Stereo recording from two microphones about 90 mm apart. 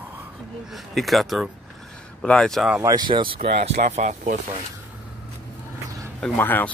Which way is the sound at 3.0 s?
65° right (ahead or behind).